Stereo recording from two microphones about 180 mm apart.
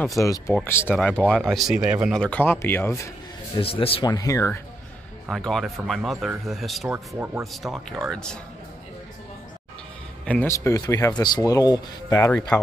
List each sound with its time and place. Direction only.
0.2 s speech: 15° left (ahead or behind); by 2.1 s 5° right (ahead or behind)
2.1 s speech: 5° left (ahead or behind)
3.5 s speech: 30° left (ahead or behind)
5.3 s speech: centre (ahead or behind)
10.2 s speech: 10° left (ahead or behind)